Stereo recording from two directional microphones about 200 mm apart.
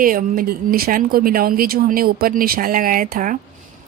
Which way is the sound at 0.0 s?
45° right (ahead or behind).